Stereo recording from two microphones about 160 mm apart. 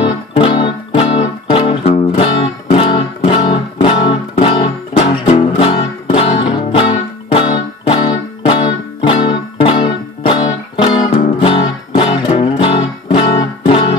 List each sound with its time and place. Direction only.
0.0 s music: 35° left (ahead or behind)